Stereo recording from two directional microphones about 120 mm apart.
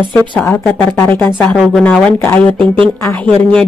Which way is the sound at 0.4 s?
15° left (ahead or behind).